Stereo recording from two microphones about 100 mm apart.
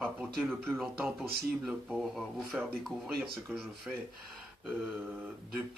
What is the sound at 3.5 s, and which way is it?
Speech, 15° right (ahead or behind).